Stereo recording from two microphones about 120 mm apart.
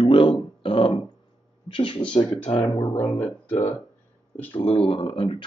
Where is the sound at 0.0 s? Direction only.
50° left (ahead or behind).